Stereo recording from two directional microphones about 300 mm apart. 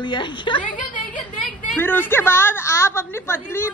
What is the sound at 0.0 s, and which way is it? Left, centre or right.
Speech, centre.